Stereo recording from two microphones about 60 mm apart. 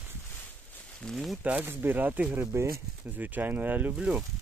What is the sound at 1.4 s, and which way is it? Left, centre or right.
Speech, right.